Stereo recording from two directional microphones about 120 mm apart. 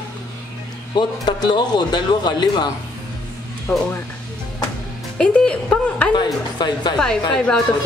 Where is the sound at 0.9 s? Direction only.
40° left (ahead or behind).